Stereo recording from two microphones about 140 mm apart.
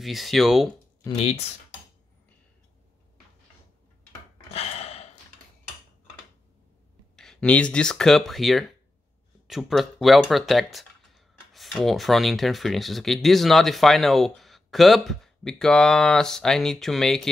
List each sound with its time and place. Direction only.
0.0 s speech: centre (ahead or behind)
4.5 s gasp: 45° left (ahead or behind)
7.2 s speech: 5° left (ahead or behind)